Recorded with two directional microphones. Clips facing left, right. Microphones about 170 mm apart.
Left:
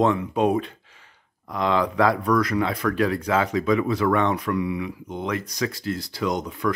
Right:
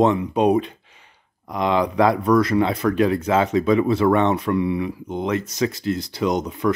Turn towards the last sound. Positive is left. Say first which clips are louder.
# right 4 dB
turn(degrees=-20)  # may be behind; listen again after turning